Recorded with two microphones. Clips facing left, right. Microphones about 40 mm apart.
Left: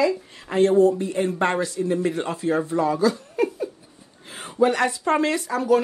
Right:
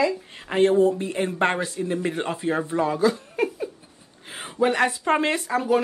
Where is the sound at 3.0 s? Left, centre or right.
Right.